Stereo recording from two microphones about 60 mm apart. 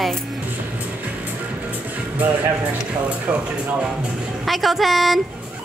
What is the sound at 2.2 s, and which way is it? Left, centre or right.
A woman's voice, right.